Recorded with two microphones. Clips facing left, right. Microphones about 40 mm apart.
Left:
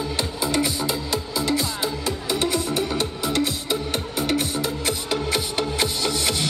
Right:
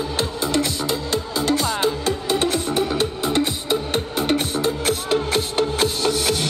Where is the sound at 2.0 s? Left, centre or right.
Right.